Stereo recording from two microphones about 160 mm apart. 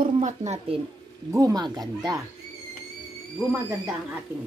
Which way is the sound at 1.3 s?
25° right (ahead or behind).